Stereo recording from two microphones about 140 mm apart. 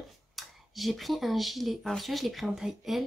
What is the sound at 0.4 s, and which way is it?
Speech, centre (ahead or behind).